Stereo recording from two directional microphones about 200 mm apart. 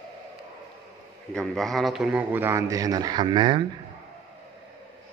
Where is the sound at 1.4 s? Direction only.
Centre (ahead or behind); by 3.6 s 20° right (ahead or behind).